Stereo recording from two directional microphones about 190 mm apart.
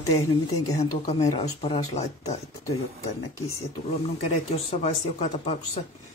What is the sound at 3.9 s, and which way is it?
Speech, 35° left (ahead or behind).